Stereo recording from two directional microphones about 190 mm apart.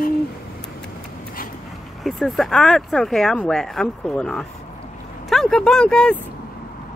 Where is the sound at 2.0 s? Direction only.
Centre (ahead or behind).